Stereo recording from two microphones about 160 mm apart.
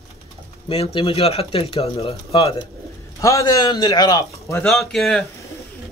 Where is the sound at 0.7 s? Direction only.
35° left (ahead or behind).